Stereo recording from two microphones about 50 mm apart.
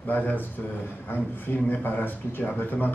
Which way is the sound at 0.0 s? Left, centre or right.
Left.